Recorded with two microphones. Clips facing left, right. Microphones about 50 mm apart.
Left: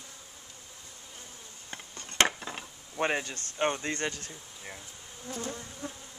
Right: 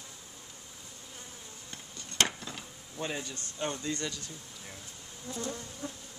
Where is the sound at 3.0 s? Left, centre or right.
Left.